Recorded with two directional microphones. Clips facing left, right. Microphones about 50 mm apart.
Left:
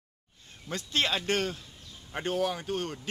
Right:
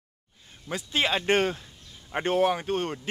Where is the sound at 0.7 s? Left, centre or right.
Centre.